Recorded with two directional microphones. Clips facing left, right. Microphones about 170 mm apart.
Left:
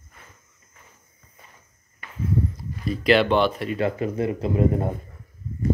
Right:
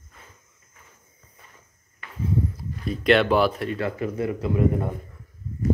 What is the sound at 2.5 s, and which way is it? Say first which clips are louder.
Speech: left 1 dB; centre (ahead or behind).